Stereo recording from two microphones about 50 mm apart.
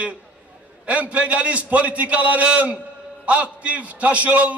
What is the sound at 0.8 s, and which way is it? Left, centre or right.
A man's voice, right.